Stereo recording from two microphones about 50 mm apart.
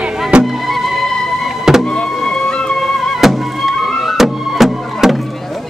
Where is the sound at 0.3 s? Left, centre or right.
Right.